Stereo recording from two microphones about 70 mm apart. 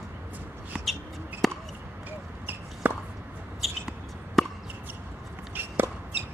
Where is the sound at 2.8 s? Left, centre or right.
Right.